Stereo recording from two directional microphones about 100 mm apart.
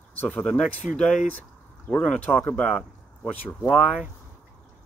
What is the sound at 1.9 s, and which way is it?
Speech, 15° left (ahead or behind).